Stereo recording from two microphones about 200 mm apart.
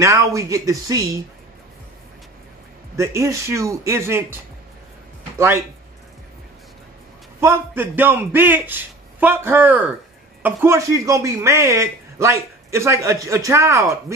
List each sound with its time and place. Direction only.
0.0 s speech: 15° right (ahead or behind)
3.0 s speech: 15° right (ahead or behind)
7.3 s speech: 10° right (ahead or behind)